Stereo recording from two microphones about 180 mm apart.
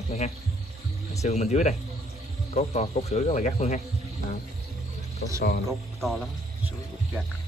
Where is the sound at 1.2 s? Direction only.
40° left (ahead or behind).